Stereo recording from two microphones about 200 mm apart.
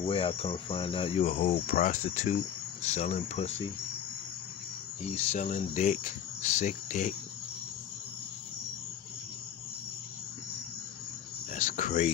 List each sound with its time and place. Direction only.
0.0 s cricket: 30° left (ahead or behind)
5.1 s cricket: 35° left (ahead or behind)
11.5 s cricket: 40° left (ahead or behind)